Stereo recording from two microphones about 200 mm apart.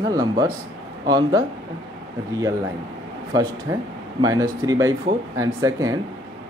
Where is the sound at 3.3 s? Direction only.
20° right (ahead or behind).